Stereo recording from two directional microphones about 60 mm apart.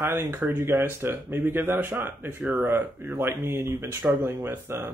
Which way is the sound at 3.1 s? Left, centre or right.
Right.